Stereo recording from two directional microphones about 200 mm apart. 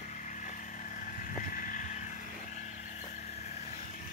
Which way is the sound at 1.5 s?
45° left (ahead or behind).